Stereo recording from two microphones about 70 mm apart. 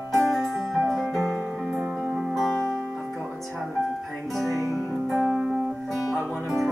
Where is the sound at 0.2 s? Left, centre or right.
Centre.